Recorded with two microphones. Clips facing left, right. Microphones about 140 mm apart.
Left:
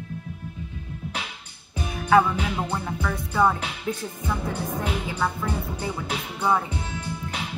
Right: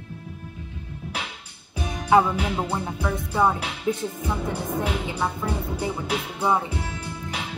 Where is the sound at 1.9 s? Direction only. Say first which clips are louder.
Even; 20° right (ahead or behind).